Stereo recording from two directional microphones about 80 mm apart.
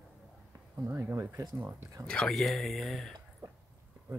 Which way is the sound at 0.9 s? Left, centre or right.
Right.